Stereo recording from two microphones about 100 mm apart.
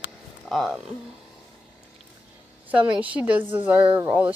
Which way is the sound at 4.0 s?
20° right (ahead or behind).